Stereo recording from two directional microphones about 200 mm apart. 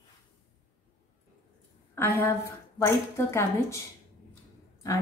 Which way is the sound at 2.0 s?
10° left (ahead or behind).